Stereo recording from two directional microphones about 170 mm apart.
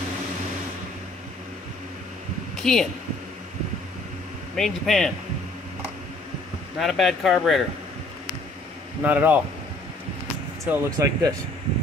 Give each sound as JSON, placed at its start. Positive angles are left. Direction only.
{"t": 2.5, "sound": "speech", "side_deg": 5}
{"t": 4.6, "sound": "speech", "side_deg": 0}
{"t": 6.8, "sound": "speech", "side_deg": 0}
{"t": 9.0, "sound": "speech", "side_deg": -10}
{"t": 10.6, "sound": "speech", "side_deg": -15}